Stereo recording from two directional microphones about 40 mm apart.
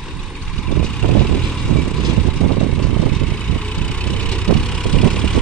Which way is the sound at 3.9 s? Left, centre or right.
Left.